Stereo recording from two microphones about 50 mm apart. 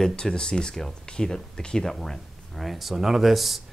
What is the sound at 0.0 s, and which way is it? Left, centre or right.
Speech, centre.